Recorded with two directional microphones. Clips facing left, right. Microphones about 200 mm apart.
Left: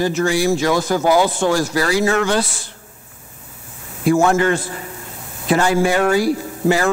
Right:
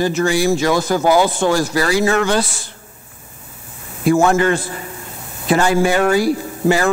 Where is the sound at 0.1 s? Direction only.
20° right (ahead or behind).